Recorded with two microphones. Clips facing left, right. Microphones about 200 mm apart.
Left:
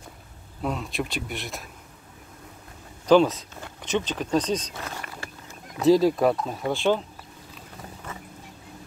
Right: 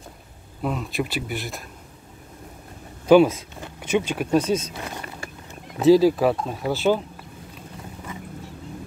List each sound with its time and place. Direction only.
0.6 s speech: centre (ahead or behind)
3.1 s speech: 10° right (ahead or behind)